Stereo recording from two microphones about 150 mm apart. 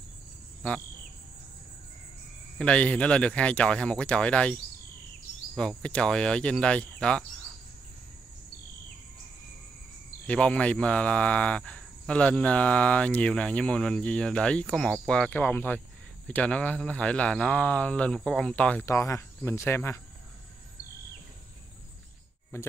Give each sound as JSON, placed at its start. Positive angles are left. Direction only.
{"t": 0.6, "sound": "cricket", "side_deg": 5}
{"t": 2.6, "sound": "speech", "side_deg": 10}
{"t": 5.6, "sound": "speech", "side_deg": 5}
{"t": 10.2, "sound": "speech", "side_deg": 5}
{"t": 18.9, "sound": "speech", "side_deg": 20}